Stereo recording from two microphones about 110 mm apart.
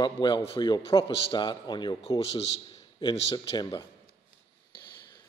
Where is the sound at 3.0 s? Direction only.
40° left (ahead or behind).